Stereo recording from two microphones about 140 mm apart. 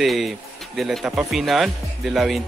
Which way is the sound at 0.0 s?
Centre (ahead or behind).